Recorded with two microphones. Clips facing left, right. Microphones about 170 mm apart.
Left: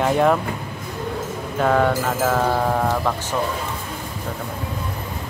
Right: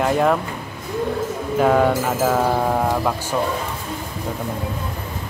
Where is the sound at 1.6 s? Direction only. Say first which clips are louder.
Right 2 dB; 10° right (ahead or behind).